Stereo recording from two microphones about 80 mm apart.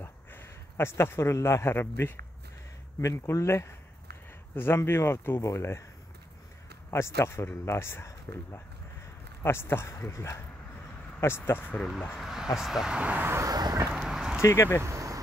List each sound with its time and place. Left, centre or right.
0.0 s speech: left
3.0 s speech: left
6.9 s speech: left
9.4 s speech: left
11.7 s speech: centre
13.5 s vehicle: right
13.9 s a sound: centre
14.4 s speech: left
14.8 s vehicle: right